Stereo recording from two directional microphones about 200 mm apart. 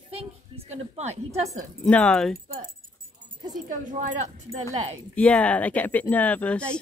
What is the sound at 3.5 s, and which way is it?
A woman's voice, 40° right (ahead or behind).